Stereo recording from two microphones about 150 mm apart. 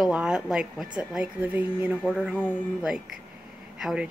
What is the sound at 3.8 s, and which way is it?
Speech, 5° right (ahead or behind).